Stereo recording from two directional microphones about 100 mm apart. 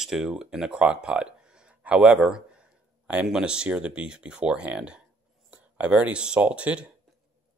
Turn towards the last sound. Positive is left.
turn(degrees=-10)  # may be behind; listen again after turning